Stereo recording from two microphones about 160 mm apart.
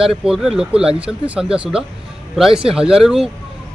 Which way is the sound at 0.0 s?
5° right (ahead or behind).